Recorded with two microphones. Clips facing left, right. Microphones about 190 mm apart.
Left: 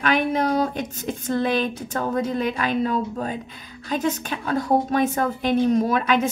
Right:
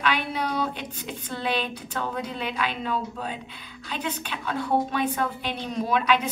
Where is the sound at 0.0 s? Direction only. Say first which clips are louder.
Left 6 dB; 45° left (ahead or behind).